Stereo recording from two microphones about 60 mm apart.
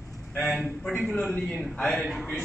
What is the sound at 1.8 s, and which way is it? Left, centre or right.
Speech, centre.